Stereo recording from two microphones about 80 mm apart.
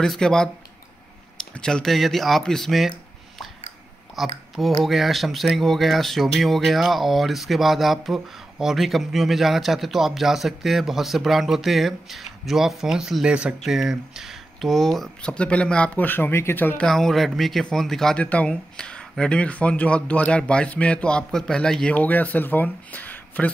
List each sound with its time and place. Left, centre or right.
0.0 s speech: centre
4.1 s speech: centre; by 16.7 s left
16.7 s speech: centre
18.2 s speech: centre